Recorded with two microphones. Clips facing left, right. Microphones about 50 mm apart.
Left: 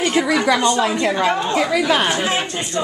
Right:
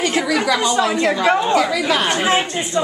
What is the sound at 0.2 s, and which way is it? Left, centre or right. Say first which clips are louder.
Speech: left 4 dB; centre.